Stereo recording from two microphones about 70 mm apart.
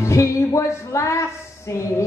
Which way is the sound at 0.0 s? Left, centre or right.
Left.